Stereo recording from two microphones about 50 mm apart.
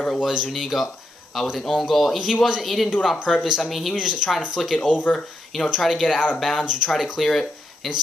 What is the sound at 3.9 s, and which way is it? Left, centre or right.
Speech, centre.